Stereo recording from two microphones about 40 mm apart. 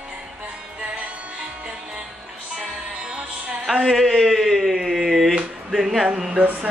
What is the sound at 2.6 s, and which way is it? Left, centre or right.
Music, centre.